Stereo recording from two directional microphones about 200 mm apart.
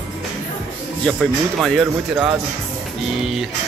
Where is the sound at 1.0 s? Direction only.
Centre (ahead or behind).